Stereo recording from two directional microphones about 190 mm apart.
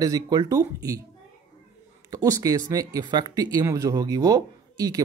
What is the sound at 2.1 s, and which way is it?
Speech, 20° right (ahead or behind).